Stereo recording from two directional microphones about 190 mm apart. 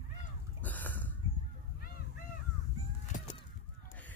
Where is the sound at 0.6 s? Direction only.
10° left (ahead or behind).